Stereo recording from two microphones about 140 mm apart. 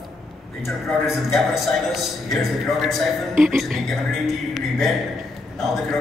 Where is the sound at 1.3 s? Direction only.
Centre (ahead or behind).